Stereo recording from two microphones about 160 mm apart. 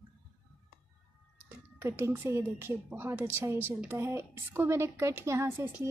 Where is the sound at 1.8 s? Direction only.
15° right (ahead or behind).